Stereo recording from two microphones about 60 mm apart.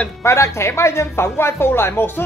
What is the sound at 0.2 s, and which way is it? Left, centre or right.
Speech, left.